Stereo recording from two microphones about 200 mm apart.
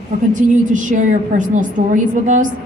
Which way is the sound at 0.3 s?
40° right (ahead or behind).